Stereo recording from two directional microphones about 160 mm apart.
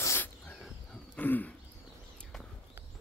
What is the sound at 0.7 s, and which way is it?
Wild animals, 10° left (ahead or behind).